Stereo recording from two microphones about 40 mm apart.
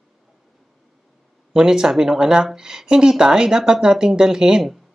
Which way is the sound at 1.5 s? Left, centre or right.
Centre.